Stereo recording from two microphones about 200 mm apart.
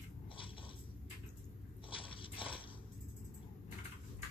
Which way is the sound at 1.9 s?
25° left (ahead or behind).